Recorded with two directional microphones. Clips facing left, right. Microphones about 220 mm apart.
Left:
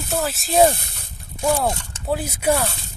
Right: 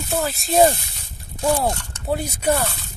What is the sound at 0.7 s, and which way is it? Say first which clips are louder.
Speech: left 1 dB; 55° left (ahead or behind).